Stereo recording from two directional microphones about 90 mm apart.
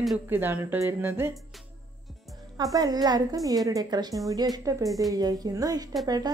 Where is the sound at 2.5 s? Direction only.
45° right (ahead or behind).